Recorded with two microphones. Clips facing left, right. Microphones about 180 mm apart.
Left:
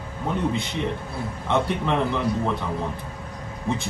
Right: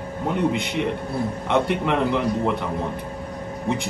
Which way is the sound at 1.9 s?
15° right (ahead or behind).